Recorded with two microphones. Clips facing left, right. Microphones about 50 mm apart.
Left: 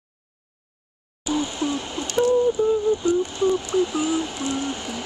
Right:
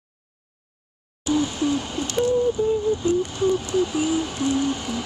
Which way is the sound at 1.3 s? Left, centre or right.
Left.